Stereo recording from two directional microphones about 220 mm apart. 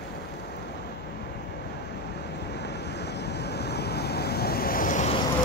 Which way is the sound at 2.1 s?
50° left (ahead or behind).